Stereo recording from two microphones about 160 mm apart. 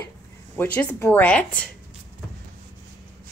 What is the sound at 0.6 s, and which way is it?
Speech, 15° left (ahead or behind).